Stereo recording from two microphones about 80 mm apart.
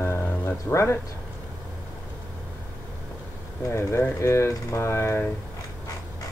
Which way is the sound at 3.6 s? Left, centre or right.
Left.